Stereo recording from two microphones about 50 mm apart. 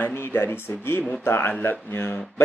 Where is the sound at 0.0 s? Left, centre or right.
Left.